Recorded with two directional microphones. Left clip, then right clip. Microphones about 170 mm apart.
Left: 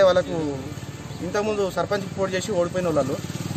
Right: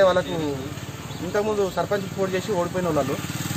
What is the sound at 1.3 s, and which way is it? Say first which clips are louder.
Speech: right 1 dB; 15° left (ahead or behind).